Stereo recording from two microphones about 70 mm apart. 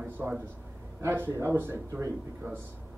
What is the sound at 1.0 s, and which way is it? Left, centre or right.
Speech, right.